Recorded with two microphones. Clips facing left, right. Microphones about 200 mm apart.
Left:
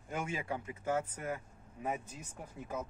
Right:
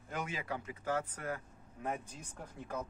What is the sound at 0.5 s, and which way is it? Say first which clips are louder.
Speech: left 2 dB; 20° left (ahead or behind).